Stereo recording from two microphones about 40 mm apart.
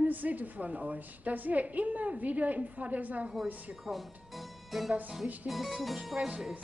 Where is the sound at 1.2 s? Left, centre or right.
Right.